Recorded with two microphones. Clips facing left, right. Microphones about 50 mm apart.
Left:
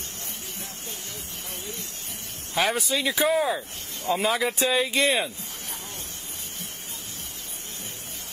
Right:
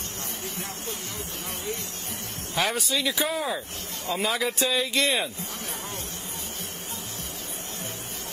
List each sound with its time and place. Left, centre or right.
2.5 s speech: centre
2.9 s speech: left